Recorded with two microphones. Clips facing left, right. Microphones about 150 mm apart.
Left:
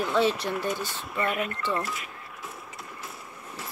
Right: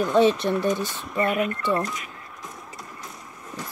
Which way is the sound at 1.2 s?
40° right (ahead or behind).